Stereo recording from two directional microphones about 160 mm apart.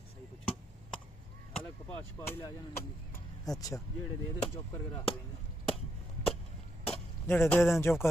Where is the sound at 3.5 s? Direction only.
20° left (ahead or behind).